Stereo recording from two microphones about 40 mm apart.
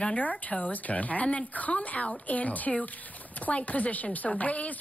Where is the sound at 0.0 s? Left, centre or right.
Left.